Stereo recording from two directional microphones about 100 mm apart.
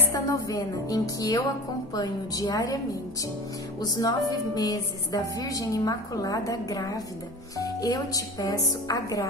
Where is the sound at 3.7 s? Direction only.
40° left (ahead or behind).